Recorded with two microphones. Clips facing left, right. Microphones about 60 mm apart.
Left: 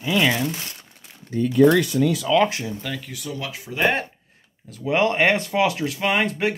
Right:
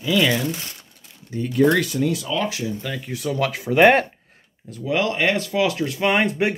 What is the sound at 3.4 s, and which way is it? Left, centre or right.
Speech, right.